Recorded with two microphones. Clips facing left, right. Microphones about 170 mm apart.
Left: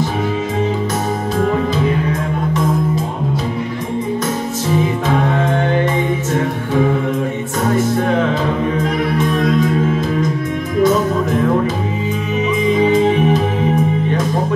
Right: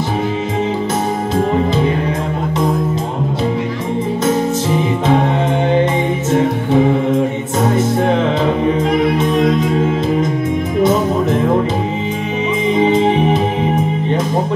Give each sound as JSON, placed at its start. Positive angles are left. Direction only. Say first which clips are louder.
{"t": 8.9, "sound": "music", "louder": "right 3 dB", "side_deg": -20}
{"t": 12.7, "sound": "music", "louder": "right 1 dB", "side_deg": -25}